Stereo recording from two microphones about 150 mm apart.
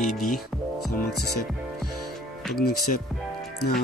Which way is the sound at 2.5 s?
85° left.